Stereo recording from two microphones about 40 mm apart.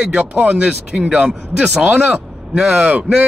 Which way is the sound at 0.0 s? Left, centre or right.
Right.